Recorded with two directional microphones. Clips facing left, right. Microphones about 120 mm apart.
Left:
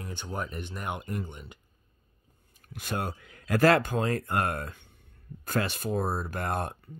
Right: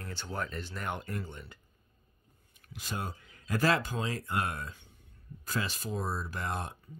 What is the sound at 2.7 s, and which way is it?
Speech, 60° left (ahead or behind).